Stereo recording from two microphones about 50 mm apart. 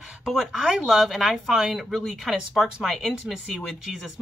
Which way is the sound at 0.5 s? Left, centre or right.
Centre.